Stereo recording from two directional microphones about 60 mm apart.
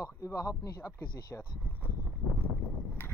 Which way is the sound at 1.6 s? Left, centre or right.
Left.